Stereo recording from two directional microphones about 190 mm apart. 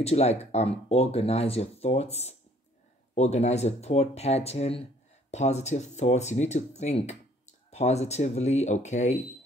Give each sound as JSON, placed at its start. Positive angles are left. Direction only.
{"t": 0.0, "sound": "speech", "side_deg": 35}